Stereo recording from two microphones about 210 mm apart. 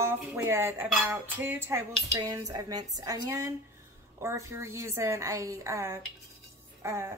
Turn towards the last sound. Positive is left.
turn(degrees=-10)  # may be behind; listen again after turning